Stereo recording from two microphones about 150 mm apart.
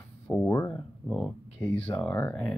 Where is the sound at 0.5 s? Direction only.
10° left (ahead or behind).